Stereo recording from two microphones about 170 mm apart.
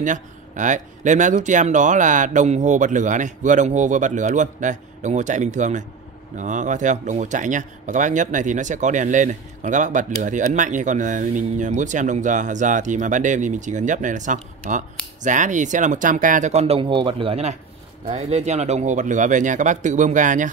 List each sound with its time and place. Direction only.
0.0 s speech: 50° right (ahead or behind)